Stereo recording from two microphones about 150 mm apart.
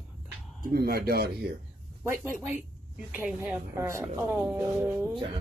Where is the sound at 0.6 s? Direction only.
85° right.